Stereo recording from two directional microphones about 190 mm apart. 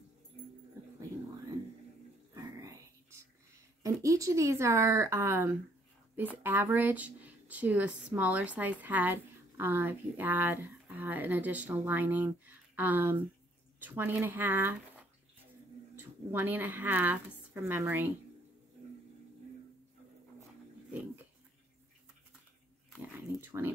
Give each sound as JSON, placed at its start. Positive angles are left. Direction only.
{"t": 2.3, "sound": "whispering", "side_deg": -15}
{"t": 3.8, "sound": "speech", "side_deg": -15}
{"t": 16.0, "sound": "speech", "side_deg": -10}
{"t": 23.4, "sound": "speech", "side_deg": -15}